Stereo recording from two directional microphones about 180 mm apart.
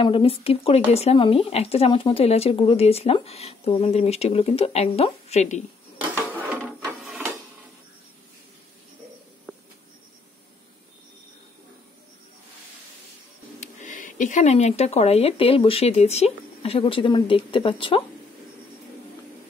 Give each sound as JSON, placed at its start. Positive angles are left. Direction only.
{"t": 0.0, "sound": "speech", "side_deg": 30}
{"t": 6.5, "sound": "printer", "side_deg": -10}
{"t": 13.6, "sound": "speech", "side_deg": 45}